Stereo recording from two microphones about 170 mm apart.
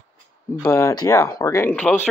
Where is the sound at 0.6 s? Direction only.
15° left (ahead or behind).